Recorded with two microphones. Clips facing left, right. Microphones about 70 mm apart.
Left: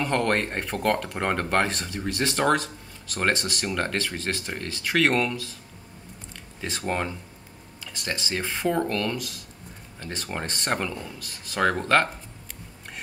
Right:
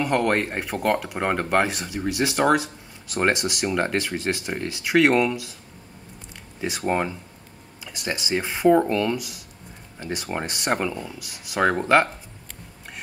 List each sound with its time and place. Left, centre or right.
0.0 s speech: centre
6.6 s speech: centre